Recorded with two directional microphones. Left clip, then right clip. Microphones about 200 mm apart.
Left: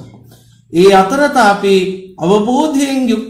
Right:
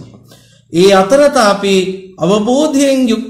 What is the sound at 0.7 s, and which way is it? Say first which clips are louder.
A man's voice: right 1 dB; 45° right (ahead or behind).